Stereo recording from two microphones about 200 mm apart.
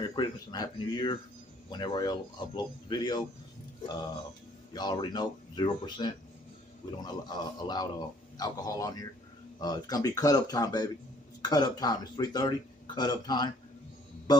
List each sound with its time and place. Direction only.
0.1 s speech: 20° left (ahead or behind)
4.7 s speech: 20° left (ahead or behind)